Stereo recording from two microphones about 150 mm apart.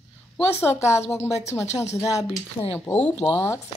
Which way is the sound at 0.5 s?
15° left (ahead or behind).